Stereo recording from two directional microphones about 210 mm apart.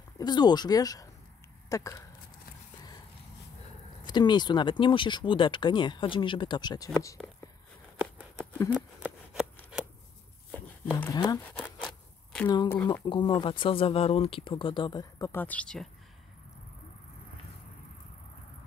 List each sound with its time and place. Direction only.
0.2 s speech: 20° left (ahead or behind)
4.0 s speech: 20° left (ahead or behind)
8.0 s a sound: 10° right (ahead or behind)
10.5 s a sound: 10° left (ahead or behind)
11.5 s zipper: 5° left (ahead or behind)
12.4 s speech: 20° left (ahead or behind)